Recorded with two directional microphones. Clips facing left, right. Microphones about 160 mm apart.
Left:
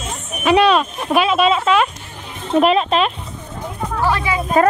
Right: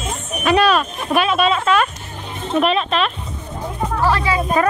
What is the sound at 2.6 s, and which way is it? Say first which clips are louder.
Speech: left 3 dB; 30° left (ahead or behind).